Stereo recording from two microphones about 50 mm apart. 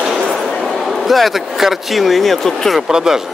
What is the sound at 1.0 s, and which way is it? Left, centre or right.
Speech, centre.